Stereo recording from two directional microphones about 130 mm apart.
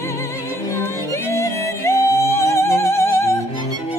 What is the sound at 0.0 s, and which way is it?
Music, 20° left (ahead or behind).